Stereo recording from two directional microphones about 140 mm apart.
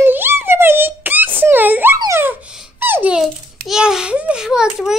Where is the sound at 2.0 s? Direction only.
20° right (ahead or behind).